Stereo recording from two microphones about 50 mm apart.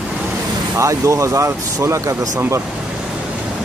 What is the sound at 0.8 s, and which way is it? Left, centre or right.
Speech, right.